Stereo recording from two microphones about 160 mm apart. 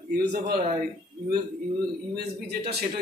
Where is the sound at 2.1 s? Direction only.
90° right.